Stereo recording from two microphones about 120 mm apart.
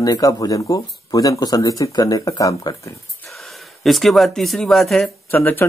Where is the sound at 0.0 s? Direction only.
30° left (ahead or behind).